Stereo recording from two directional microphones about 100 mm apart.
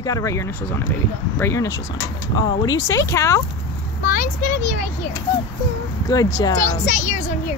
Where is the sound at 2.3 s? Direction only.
40° left (ahead or behind).